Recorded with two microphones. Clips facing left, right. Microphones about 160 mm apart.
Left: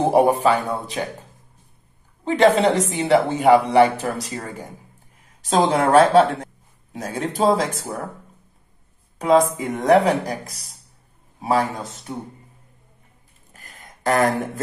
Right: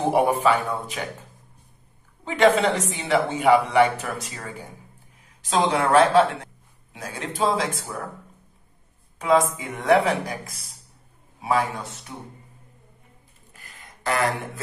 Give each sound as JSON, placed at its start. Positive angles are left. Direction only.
{"t": 0.1, "sound": "a woman's voice", "side_deg": 35}
{"t": 2.2, "sound": "a woman's voice", "side_deg": 35}
{"t": 9.2, "sound": "a woman's voice", "side_deg": 40}
{"t": 12.1, "sound": "a woman's voice", "side_deg": 35}
{"t": 13.5, "sound": "a sound", "side_deg": 50}